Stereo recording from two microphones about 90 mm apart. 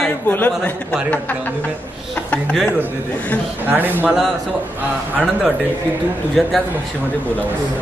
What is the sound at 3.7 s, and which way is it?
Speech, 20° right (ahead or behind).